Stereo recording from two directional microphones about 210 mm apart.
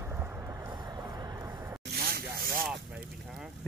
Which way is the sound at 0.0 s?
10° right (ahead or behind).